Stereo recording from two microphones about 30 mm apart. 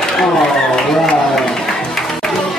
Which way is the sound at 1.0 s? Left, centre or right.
Centre.